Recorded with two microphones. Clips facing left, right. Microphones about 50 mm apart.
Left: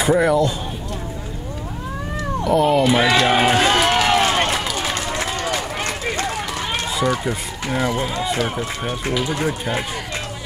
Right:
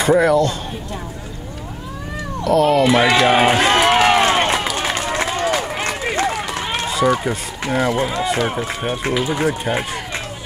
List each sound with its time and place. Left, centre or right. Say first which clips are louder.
0.2 s speech: right 2 dB; centre
2.4 s speech: right 2 dB; centre
2.9 s speech: right 2 dB; centre
3.8 s run: right 3 dB; right; by 8.1 s centre
8.2 s speech: right 3 dB; centre
8.5 s speech: right 2 dB; centre